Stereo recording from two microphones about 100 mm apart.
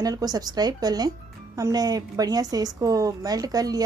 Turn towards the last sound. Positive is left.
turn(degrees=-40)  # may be behind; listen again after turning